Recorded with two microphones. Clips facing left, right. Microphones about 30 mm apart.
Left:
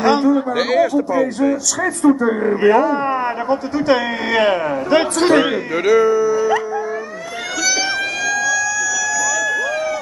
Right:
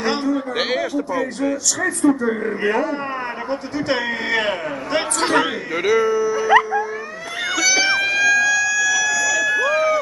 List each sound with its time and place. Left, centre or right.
0.0 s a sound: centre
0.6 s speech: centre
0.9 s speech: centre
5.9 s speech: centre
7.6 s emergency vehicle: centre